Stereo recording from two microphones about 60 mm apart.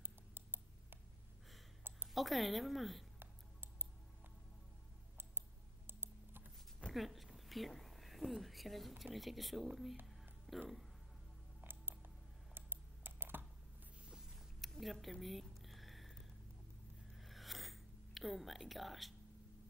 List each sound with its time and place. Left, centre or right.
0.0 s a sound: right
2.1 s a woman's voice: centre
5.9 s computer keyboard: right
6.9 s speech: centre
11.6 s creak: right
12.5 s computer keyboard: right
14.0 s a sound: centre
17.2 s sniff: centre